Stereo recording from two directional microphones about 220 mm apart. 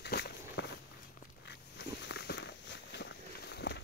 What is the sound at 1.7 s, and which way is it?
Walk, 50° left (ahead or behind).